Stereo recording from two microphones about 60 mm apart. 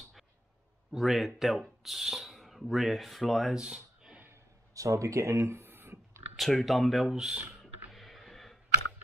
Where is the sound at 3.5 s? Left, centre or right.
Centre.